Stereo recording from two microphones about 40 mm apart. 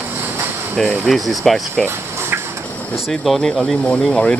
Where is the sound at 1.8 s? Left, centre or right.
Right.